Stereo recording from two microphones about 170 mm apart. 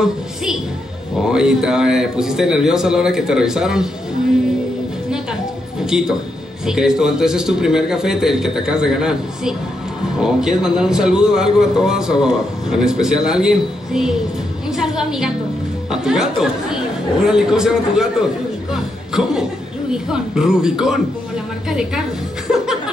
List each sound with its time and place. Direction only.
1.1 s a man's voice: 5° right (ahead or behind)
5.1 s a sound: 5° right (ahead or behind)
6.6 s a man's voice: 5° right (ahead or behind)
18.7 s a sound: 5° right (ahead or behind)
19.9 s a man's voice: 5° right (ahead or behind)
22.5 s chuckle: 5° right (ahead or behind)